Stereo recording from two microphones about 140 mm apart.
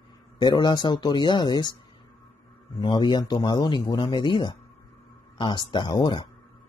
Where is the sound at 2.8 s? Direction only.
35° left (ahead or behind).